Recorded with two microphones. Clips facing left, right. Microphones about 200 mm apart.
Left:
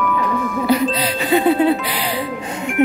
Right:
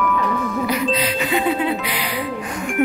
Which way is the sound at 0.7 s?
35° left (ahead or behind).